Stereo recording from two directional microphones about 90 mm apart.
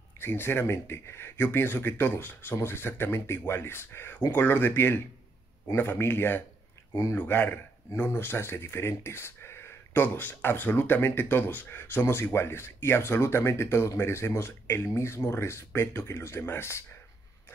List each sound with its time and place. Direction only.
0.2 s speech: 25° left (ahead or behind)